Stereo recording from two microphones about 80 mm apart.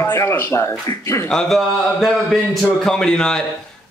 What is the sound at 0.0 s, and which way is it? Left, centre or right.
Speech, left.